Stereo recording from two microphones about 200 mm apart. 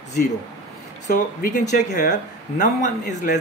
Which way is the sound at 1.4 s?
45° left (ahead or behind).